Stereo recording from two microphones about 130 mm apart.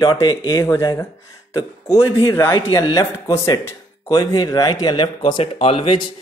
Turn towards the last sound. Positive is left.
turn(degrees=40)  # may be behind; listen again after turning